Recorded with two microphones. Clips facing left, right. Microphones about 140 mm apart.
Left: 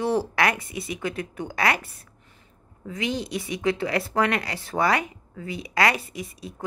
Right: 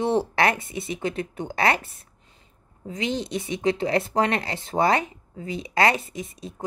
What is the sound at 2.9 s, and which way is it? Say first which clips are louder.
Speech: right 1 dB; 25° right (ahead or behind).